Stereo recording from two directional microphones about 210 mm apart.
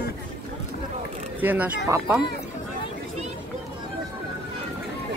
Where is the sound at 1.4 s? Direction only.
10° right (ahead or behind).